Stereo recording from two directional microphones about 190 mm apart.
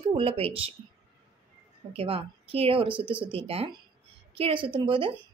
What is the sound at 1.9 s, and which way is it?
Speech, 30° right (ahead or behind).